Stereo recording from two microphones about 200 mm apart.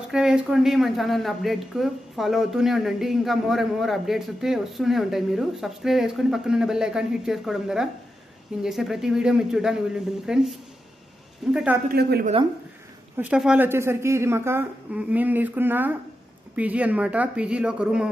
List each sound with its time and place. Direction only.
0.1 s a woman's voice: 5° right (ahead or behind)
11.5 s a woman's voice: 5° right (ahead or behind)
11.9 s a woman's voice: 50° right (ahead or behind)
13.2 s a woman's voice: 5° right (ahead or behind)